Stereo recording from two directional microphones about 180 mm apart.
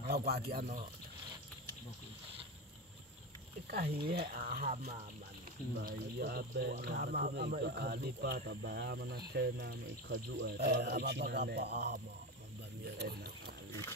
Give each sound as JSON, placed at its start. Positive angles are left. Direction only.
{"t": 0.0, "sound": "speech", "side_deg": -60}
{"t": 4.1, "sound": "speech", "side_deg": -55}
{"t": 5.8, "sound": "speech", "side_deg": -60}
{"t": 12.8, "sound": "a sound", "side_deg": -65}